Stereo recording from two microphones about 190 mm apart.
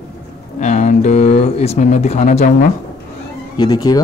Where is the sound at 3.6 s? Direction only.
20° left (ahead or behind).